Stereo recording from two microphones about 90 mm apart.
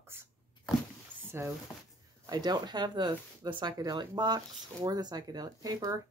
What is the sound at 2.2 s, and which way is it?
Speech, 50° right (ahead or behind).